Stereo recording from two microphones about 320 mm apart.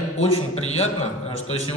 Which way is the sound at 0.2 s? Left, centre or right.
Centre.